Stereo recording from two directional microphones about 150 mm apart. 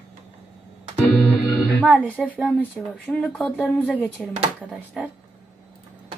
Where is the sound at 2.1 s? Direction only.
10° left (ahead or behind); by 5.1 s 10° right (ahead or behind).